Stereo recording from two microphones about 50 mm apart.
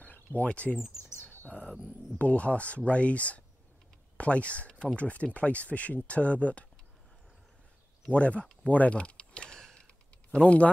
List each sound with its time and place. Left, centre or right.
0.0 s a sound: left
0.5 s speech: left
1.2 s bird: left
2.1 s speech: left
8.1 s speech: left
8.6 s a sound: left; by 9.8 s centre
10.4 s speech: left